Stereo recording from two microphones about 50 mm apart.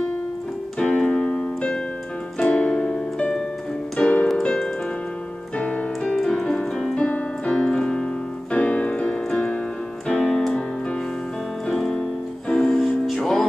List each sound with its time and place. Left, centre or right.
0.7 s keyboard: centre
2.4 s music: left
4.0 s keyboard: left
4.4 s music: centre
6.0 s keyboard: centre
7.0 s piano: left
10.0 s keyboard: centre
11.6 s piano: centre
12.4 s music: centre
12.7 s music: centre